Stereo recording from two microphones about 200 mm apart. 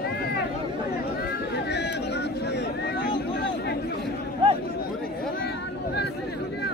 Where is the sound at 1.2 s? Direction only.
55° left (ahead or behind).